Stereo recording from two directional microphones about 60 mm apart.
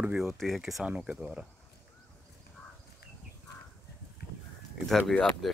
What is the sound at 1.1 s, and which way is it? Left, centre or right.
Speech, centre.